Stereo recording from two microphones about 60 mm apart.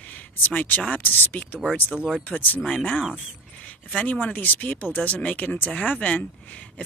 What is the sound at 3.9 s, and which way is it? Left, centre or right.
Speech, left.